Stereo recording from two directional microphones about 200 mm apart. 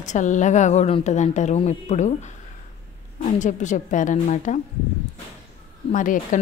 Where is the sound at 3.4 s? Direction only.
40° left (ahead or behind).